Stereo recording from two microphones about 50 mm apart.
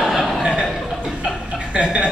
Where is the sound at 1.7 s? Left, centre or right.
Right.